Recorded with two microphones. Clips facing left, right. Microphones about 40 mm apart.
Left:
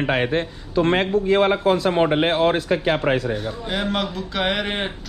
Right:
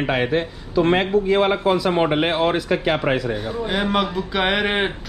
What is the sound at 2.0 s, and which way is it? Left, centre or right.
Speech, right.